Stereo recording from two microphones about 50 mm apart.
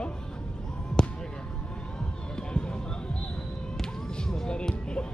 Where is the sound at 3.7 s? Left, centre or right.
Centre.